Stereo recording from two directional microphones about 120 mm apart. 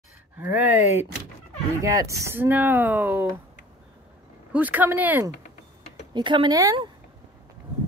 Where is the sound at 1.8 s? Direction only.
25° right (ahead or behind).